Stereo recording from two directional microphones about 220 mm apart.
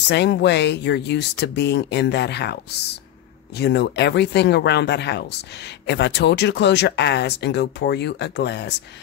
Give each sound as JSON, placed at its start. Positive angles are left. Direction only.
{"t": 0.1, "sound": "speech", "side_deg": 50}